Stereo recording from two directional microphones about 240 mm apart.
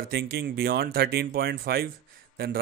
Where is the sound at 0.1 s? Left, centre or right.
Right.